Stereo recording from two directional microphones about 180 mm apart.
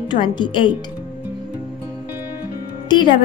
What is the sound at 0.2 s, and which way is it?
Speech, 25° left (ahead or behind).